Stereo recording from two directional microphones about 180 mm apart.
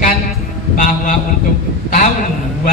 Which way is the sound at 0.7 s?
40° left (ahead or behind).